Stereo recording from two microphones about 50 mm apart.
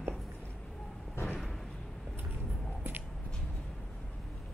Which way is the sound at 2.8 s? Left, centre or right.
Right.